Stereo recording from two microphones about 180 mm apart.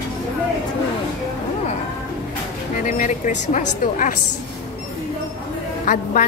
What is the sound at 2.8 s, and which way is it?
A woman's voice, 45° left (ahead or behind).